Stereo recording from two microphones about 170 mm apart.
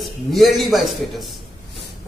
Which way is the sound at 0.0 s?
Centre (ahead or behind).